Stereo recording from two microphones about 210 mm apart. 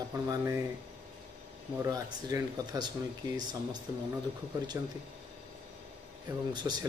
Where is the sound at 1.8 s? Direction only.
15° right (ahead or behind).